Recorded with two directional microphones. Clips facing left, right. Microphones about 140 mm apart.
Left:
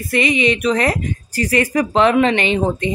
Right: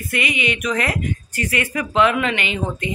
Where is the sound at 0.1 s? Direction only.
35° left (ahead or behind).